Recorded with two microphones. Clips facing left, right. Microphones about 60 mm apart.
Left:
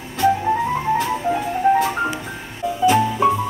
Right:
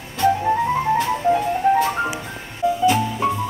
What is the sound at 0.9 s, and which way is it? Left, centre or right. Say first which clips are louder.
Music: right 2 dB; centre.